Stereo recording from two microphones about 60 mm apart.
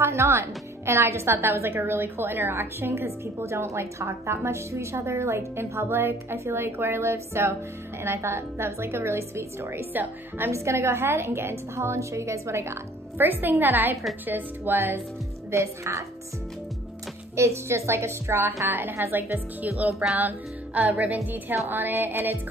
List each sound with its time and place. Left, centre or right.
0.0 s a woman's voice: right
10.5 s a woman's voice: right
13.2 s a woman's voice: right
15.5 s a woman's voice: right
17.4 s a woman's voice: right
20.2 s music: right
21.0 s a woman's voice: right